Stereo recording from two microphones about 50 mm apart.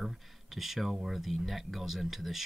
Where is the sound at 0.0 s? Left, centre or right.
Centre.